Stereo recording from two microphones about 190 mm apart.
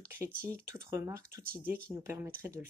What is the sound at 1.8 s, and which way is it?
Speech, 15° right (ahead or behind).